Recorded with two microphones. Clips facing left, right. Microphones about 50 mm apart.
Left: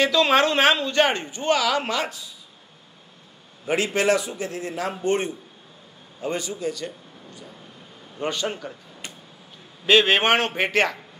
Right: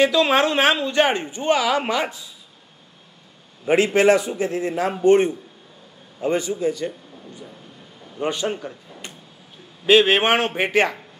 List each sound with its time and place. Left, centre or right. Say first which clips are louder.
0.0 s speech: right 2 dB; centre
3.6 s a man's voice: right 6 dB; right
8.2 s speech: right 3 dB; centre
9.8 s speech: right 2 dB; centre